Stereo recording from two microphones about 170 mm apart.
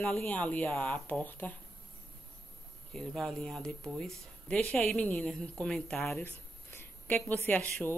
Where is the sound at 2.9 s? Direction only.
5° left (ahead or behind).